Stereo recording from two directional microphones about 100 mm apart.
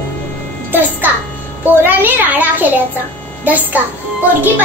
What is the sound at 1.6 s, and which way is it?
A child's voice, 20° right (ahead or behind).